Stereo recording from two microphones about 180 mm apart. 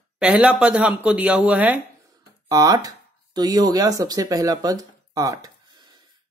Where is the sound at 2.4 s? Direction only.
20° right (ahead or behind).